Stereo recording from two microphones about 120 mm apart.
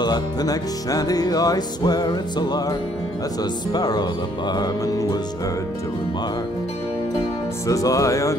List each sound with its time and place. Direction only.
0.0 s music: 35° left (ahead or behind)
3.7 s music: 35° left (ahead or behind)
7.6 s music: 30° left (ahead or behind)